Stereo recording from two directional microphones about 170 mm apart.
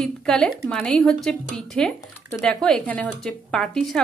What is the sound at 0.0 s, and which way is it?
Speech, 5° left (ahead or behind).